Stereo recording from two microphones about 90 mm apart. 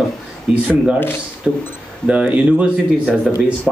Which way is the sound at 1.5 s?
15° right (ahead or behind).